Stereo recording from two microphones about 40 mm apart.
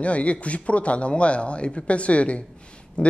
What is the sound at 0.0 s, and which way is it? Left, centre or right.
A woman's voice, left.